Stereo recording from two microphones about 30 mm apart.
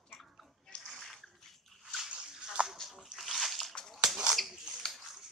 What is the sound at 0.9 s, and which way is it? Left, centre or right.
Bathtub, centre.